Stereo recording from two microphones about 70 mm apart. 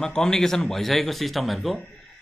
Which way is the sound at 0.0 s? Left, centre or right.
Centre.